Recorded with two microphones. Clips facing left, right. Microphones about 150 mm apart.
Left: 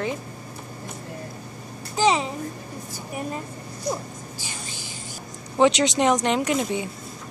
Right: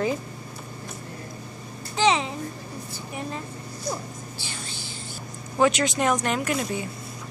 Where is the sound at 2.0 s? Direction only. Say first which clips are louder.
Left 1 dB; 5° left (ahead or behind).